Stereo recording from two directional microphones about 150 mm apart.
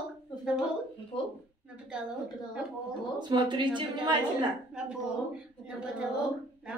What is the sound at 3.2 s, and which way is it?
Speech, 30° right (ahead or behind).